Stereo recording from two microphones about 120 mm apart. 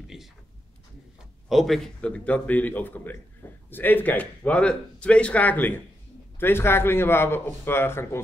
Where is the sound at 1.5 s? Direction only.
Centre (ahead or behind).